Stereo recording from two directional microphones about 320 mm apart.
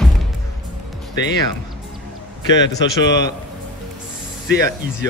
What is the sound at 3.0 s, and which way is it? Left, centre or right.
Speech, left.